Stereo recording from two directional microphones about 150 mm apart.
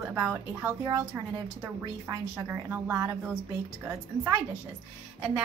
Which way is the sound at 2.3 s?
15° right (ahead or behind).